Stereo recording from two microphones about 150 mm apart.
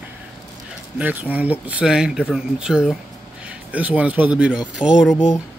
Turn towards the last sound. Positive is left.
turn(degrees=-5)  # may be behind; listen again after turning